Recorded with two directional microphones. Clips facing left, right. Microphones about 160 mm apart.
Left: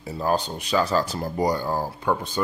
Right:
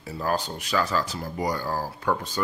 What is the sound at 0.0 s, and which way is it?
Speech, 20° left (ahead or behind).